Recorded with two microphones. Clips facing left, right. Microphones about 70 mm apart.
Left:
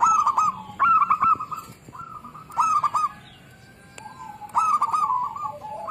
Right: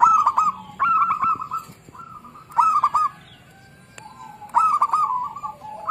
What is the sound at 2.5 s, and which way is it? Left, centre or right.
Goose, right.